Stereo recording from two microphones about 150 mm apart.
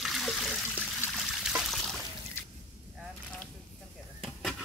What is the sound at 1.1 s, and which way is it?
Trickle, centre (ahead or behind).